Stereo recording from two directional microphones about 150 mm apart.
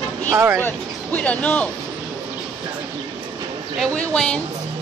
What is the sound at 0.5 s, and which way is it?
Speech, 10° left (ahead or behind).